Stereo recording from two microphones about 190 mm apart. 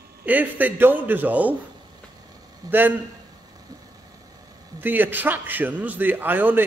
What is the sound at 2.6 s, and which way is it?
Speech, 20° right (ahead or behind).